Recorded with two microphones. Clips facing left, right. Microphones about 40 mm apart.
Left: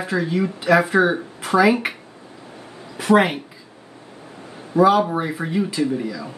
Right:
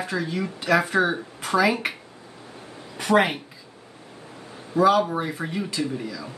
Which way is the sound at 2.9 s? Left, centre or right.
Centre.